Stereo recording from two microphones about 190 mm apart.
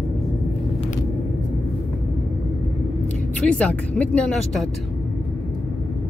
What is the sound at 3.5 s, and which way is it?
Speech, 5° left (ahead or behind).